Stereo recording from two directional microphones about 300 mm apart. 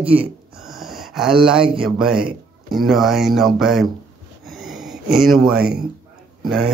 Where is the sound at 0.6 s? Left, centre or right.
Centre.